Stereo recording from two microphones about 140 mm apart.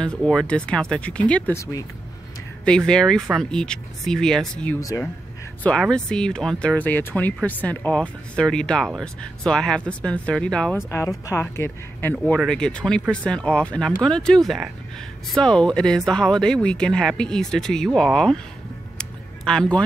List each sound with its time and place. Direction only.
0.0 s speech: 5° left (ahead or behind)
1.6 s speech: 25° left (ahead or behind)
2.6 s speech: 5° left (ahead or behind)
4.7 s speech: 20° left (ahead or behind)
5.6 s speech: 5° left (ahead or behind)
10.9 s speech: 20° left (ahead or behind); by 18.4 s 5° left (ahead or behind)
18.9 s a sound: 5° left (ahead or behind)